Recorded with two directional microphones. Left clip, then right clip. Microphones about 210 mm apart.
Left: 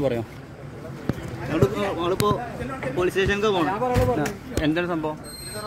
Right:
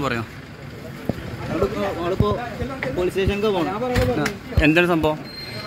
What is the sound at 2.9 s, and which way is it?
Speech, centre (ahead or behind).